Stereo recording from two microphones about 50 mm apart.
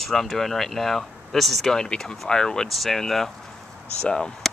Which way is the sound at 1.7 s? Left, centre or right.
Centre.